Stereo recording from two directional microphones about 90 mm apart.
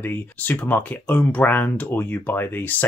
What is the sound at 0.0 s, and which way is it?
Speech, 20° left (ahead or behind).